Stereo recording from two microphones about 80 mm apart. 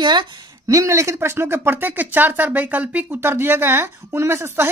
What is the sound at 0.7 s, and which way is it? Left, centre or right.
Speech, right.